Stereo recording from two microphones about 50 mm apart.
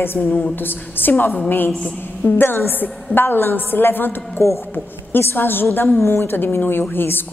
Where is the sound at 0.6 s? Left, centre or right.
Left.